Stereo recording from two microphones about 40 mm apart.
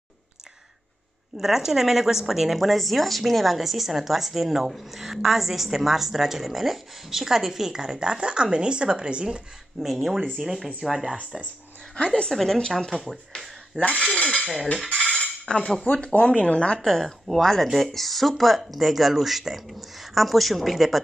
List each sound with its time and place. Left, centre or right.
1.4 s speech: centre; by 9.8 s right
9.8 s speech: centre
12.3 s speech: centre
12.9 s speech: centre
13.7 s speech: left
14.1 s cutlery: centre
14.4 s cutlery: centre
15.4 s cutlery: centre
15.8 s speech: left
16.8 s speech: centre